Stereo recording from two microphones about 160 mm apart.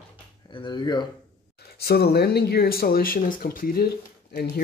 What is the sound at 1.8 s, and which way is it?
Speech, 85° left.